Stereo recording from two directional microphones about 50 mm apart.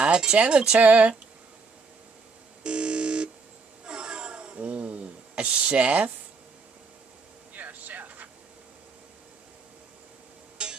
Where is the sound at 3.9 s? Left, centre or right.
Centre.